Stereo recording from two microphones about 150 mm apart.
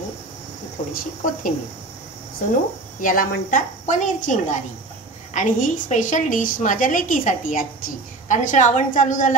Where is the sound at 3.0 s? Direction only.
65° left (ahead or behind).